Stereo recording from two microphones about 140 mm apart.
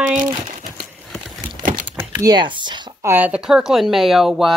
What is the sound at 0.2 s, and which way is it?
Crumpling, 65° right (ahead or behind).